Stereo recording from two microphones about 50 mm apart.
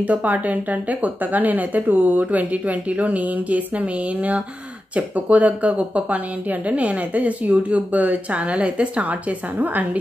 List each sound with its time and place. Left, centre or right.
0.0 s a woman's voice: right